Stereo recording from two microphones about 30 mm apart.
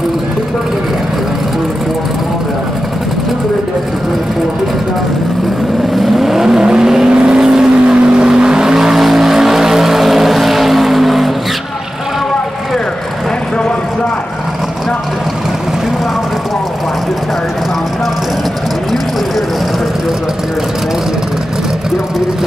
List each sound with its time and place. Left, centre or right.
5.9 s vehicle: centre
6.6 s vehicle: right
8.9 s vehicle: centre